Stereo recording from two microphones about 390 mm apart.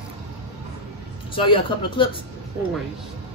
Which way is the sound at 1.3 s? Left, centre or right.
Centre.